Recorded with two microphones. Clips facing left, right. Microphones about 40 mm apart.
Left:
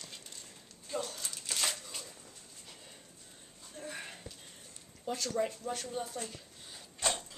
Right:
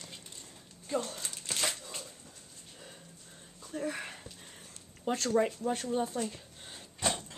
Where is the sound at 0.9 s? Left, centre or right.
Right.